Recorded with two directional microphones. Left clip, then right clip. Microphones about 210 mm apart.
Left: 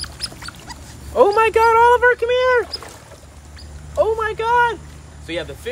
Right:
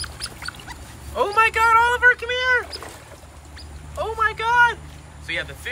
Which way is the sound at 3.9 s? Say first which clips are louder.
Left 4 dB; 30° left (ahead or behind).